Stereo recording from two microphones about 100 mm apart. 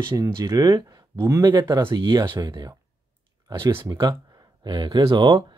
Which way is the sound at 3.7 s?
25° right (ahead or behind).